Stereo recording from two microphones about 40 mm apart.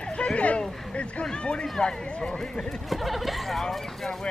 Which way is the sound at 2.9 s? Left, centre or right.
Centre.